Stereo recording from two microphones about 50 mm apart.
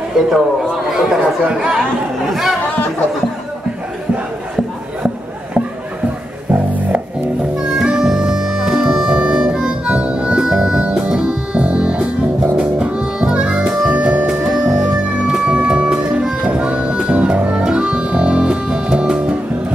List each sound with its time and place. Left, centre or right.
0.2 s a man's voice: centre
1.2 s speech: right
6.5 s music: right
7.5 s music: centre
9.2 s harmonica: centre
10.8 s music: centre
14.6 s music: centre